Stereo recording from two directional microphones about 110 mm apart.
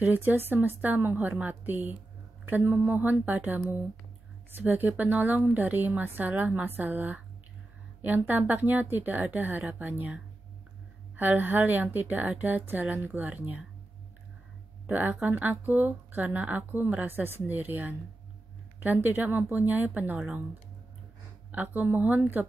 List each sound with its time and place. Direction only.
0.0 s a woman's voice: 15° right (ahead or behind)
14.9 s a woman's voice: 15° right (ahead or behind)
21.5 s a woman's voice: 15° right (ahead or behind)